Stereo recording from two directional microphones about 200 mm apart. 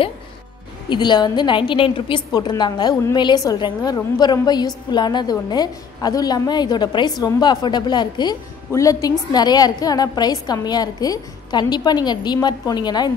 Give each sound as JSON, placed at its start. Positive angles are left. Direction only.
{"t": 0.8, "sound": "a woman's voice", "side_deg": 20}